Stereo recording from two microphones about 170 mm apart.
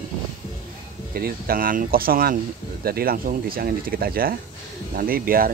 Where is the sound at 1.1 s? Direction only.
60° right (ahead or behind).